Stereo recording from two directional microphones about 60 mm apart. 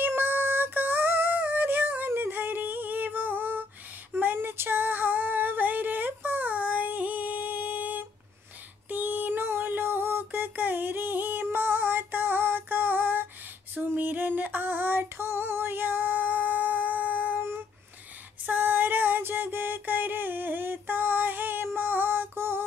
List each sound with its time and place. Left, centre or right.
0.0 s music: right
2.0 s a sound: right
4.1 s music: right
8.8 s a sound: right
13.7 s female singing: right
18.5 s music: right
21.7 s female singing: right